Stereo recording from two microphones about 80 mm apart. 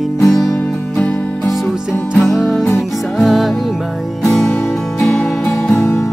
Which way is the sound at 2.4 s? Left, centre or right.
Centre.